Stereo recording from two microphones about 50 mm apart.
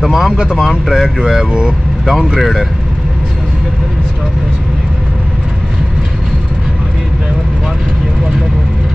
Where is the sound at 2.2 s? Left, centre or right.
Centre.